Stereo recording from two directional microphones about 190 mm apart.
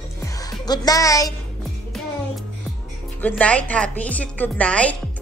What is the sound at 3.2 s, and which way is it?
A woman's voice, 10° left (ahead or behind).